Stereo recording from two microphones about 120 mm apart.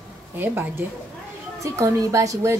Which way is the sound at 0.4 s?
20° right (ahead or behind).